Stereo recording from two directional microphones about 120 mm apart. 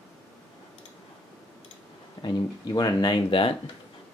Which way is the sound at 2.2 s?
35° left (ahead or behind).